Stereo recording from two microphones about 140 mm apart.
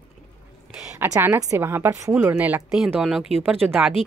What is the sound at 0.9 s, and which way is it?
Speech, 15° right (ahead or behind).